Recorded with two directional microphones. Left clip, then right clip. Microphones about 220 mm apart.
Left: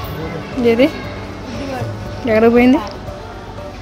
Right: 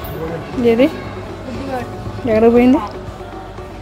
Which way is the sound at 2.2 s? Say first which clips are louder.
Even; 5° right (ahead or behind).